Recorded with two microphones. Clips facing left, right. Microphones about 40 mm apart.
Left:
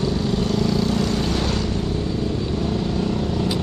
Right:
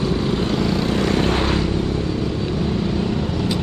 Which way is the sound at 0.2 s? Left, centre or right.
Right.